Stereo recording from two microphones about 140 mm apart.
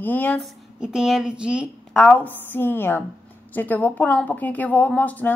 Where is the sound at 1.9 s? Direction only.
5° left (ahead or behind).